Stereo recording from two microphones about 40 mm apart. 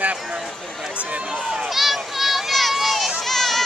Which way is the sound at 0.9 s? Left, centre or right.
Right.